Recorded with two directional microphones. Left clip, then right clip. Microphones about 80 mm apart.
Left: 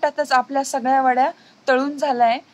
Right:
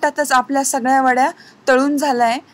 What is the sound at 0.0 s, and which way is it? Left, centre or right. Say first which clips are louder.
A woman's voice: right 3 dB; right.